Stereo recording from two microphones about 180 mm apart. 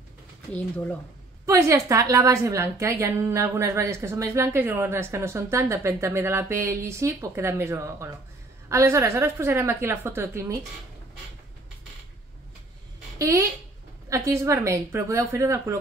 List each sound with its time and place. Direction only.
1.4 s a woman's voice: 15° right (ahead or behind)
13.2 s a woman's voice: 15° right (ahead or behind)